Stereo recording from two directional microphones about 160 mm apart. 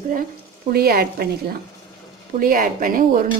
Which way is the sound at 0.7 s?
70° right (ahead or behind).